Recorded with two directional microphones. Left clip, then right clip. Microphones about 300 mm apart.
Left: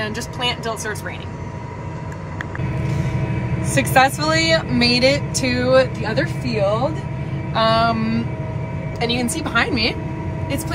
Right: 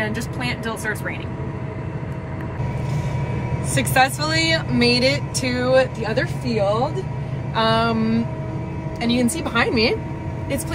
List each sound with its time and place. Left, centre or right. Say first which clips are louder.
3.6 s speech: left 3 dB; centre